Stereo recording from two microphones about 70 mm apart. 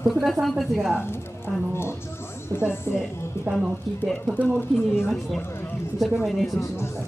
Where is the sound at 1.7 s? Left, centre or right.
Left.